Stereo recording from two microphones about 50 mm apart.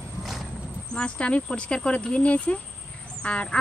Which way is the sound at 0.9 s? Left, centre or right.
Left.